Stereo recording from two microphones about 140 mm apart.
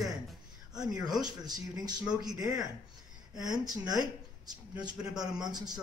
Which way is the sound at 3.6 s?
30° right (ahead or behind).